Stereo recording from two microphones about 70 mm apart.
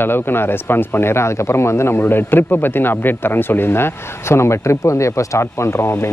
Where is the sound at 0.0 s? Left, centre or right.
Left.